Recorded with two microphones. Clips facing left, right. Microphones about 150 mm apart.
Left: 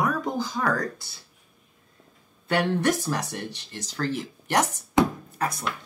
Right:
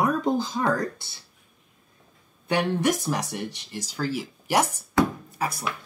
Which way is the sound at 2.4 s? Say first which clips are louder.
Even; 15° right (ahead or behind).